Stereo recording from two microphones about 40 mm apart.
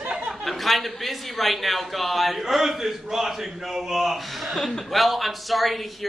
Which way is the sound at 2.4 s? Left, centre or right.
Centre.